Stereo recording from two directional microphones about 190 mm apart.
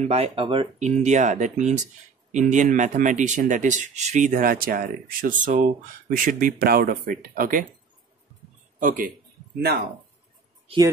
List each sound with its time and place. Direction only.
0.0 s speech: 30° right (ahead or behind); by 7.6 s 50° right (ahead or behind)
8.7 s speech: 45° right (ahead or behind)